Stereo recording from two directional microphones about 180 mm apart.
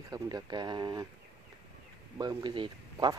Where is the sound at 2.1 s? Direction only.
25° right (ahead or behind).